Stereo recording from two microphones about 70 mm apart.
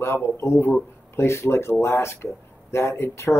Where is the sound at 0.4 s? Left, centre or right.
Left.